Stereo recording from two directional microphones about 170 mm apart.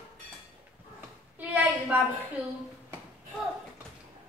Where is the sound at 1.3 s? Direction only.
10° right (ahead or behind).